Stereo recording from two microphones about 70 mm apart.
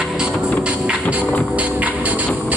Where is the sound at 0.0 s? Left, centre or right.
Centre.